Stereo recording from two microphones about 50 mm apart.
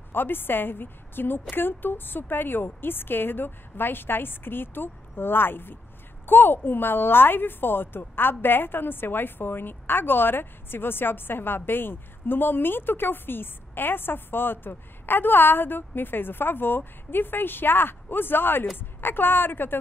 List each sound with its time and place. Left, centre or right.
0.1 s a woman's voice: left